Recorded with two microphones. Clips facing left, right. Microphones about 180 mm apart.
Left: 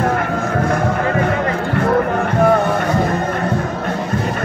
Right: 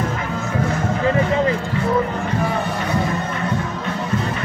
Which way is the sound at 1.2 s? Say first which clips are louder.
Left 1 dB; 60° left (ahead or behind).